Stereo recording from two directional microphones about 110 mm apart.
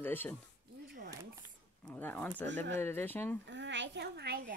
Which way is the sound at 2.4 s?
20° left (ahead or behind).